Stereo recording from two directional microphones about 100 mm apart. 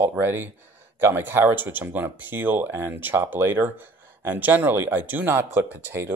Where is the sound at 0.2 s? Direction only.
20° right (ahead or behind).